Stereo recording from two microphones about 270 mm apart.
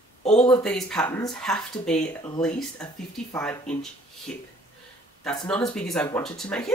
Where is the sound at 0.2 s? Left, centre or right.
Left.